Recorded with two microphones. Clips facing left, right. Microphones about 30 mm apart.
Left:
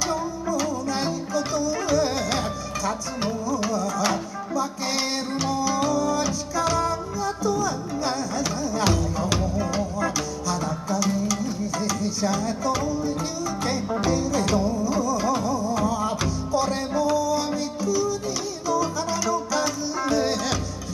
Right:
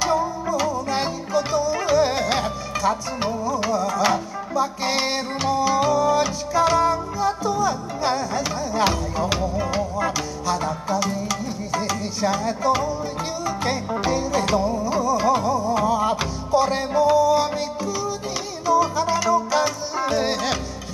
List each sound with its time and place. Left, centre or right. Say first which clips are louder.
0.0 s music: right 5 dB; centre